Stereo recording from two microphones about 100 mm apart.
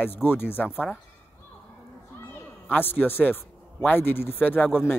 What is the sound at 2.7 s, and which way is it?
A man's voice, 20° left (ahead or behind).